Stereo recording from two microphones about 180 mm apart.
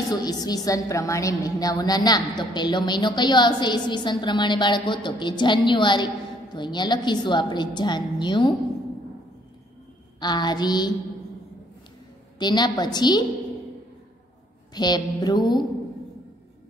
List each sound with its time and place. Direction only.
0.1 s a woman's voice: 20° left (ahead or behind)
10.2 s a woman's voice: 25° left (ahead or behind)
12.4 s a woman's voice: 25° left (ahead or behind)
14.7 s a woman's voice: 25° left (ahead or behind)